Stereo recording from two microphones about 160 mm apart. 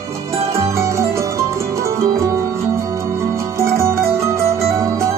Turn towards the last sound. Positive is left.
turn(degrees=-15)  # may be behind; listen again after turning